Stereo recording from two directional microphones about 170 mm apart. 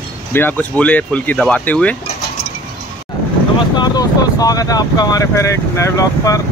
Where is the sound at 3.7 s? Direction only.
20° left (ahead or behind).